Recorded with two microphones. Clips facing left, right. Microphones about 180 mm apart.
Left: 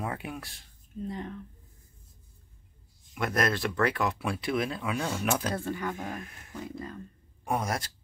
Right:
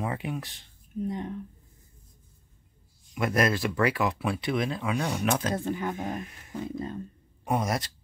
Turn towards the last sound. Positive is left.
turn(degrees=0)  # may be behind; listen again after turning